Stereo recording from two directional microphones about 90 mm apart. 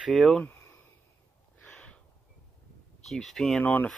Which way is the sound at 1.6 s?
10° left (ahead or behind).